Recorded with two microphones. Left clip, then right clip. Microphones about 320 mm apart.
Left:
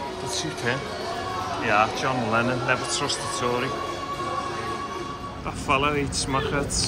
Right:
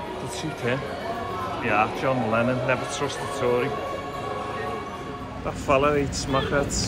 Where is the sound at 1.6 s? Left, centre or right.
Centre.